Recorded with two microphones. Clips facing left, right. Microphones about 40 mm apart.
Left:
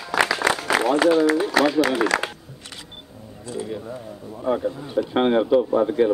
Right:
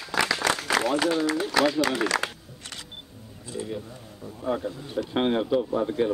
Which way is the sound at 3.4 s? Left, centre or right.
Centre.